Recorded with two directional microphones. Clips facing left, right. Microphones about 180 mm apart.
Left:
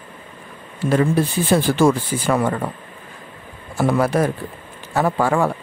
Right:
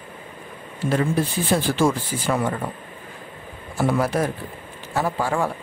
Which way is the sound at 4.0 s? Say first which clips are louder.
Left 4 dB; 60° left (ahead or behind).